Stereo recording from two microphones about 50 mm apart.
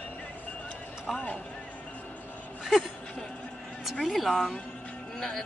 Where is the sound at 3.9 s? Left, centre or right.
Centre.